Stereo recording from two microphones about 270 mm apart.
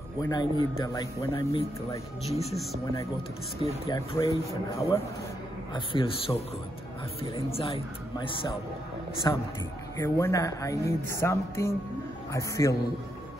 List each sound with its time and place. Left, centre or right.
0.2 s a man's voice: centre
3.8 s a man's voice: centre